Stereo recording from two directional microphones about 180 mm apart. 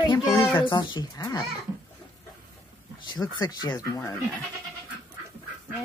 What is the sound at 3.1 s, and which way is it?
Speech, 25° left (ahead or behind).